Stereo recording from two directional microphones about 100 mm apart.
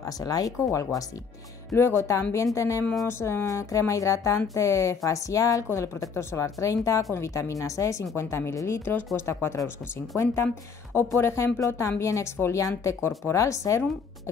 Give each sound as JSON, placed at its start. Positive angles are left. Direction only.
{"t": 0.0, "sound": "a woman's voice", "side_deg": 40}
{"t": 2.8, "sound": "speech", "side_deg": 5}
{"t": 3.1, "sound": "a woman's voice", "side_deg": 25}